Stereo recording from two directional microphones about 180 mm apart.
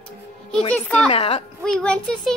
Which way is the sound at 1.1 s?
30° left (ahead or behind).